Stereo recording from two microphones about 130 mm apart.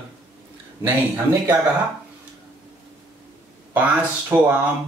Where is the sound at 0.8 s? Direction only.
15° right (ahead or behind).